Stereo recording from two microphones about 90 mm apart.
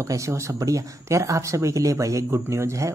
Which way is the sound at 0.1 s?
35° right (ahead or behind).